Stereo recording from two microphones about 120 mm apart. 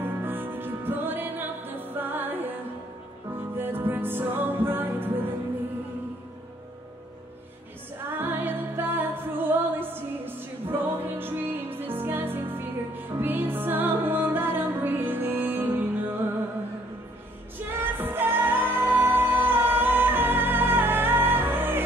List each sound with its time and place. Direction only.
0.0 s music: 15° right (ahead or behind)
8.2 s music: 15° right (ahead or behind)
17.9 s music: 15° right (ahead or behind)